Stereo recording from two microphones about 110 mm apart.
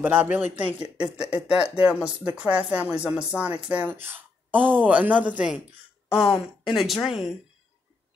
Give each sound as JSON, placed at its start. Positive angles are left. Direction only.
{"t": 0.0, "sound": "speech", "side_deg": -20}
{"t": 6.6, "sound": "speech", "side_deg": 0}